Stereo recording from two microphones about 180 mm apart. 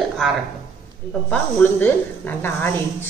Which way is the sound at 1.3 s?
10° left (ahead or behind).